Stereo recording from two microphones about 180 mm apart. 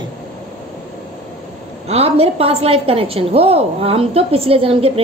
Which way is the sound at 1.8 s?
35° right (ahead or behind).